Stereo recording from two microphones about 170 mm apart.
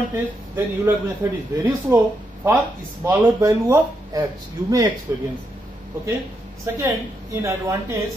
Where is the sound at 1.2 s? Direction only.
15° right (ahead or behind).